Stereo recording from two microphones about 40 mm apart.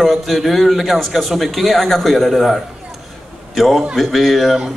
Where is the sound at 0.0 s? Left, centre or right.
Centre.